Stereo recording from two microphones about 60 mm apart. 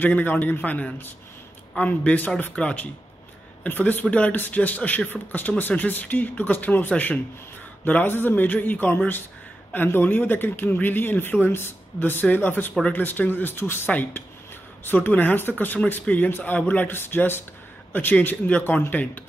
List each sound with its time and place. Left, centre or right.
0.0 s speech: left
3.6 s speech: left